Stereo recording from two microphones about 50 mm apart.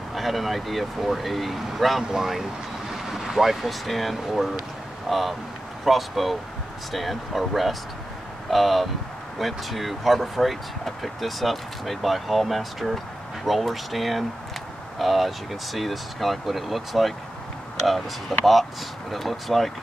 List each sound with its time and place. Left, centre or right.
0.1 s speech: centre